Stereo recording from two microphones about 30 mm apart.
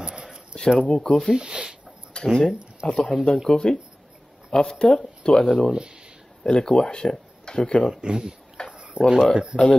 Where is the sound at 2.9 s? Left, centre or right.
Centre.